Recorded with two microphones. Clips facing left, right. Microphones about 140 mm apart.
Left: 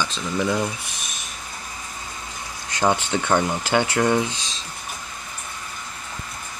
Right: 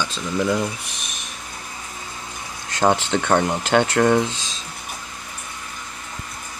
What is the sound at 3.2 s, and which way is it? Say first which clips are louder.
Speech: right 2 dB; 30° right (ahead or behind).